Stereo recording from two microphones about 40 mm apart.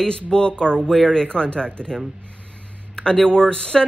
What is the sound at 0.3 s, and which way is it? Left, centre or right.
A woman's voice, left.